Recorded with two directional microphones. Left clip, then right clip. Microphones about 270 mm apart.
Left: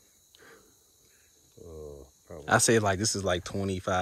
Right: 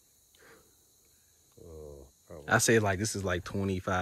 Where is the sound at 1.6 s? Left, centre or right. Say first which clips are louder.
Left 4 dB; left.